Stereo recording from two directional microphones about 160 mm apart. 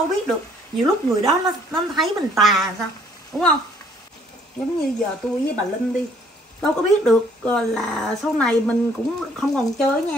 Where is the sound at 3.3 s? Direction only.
20° left (ahead or behind).